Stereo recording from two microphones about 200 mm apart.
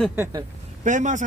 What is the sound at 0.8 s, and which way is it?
Speech, 40° right (ahead or behind).